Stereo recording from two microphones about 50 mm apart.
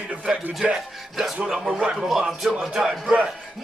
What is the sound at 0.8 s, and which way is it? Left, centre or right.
Speech, centre.